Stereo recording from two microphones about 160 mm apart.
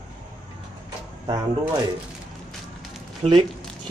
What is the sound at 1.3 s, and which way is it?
Speech, 25° right (ahead or behind).